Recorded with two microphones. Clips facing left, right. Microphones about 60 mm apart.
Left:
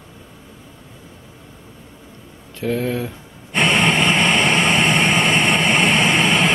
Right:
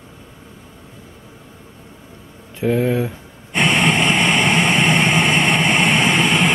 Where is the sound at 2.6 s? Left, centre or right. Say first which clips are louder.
Right 4 dB; centre.